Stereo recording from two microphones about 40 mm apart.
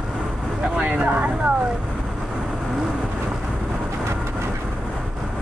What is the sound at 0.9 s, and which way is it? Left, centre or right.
Speech, right.